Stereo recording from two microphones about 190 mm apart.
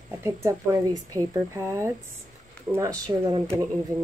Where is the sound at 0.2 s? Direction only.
15° right (ahead or behind).